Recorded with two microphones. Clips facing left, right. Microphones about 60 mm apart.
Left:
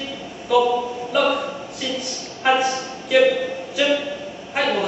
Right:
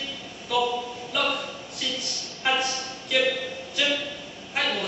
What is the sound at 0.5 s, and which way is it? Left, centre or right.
A woman's voice, centre.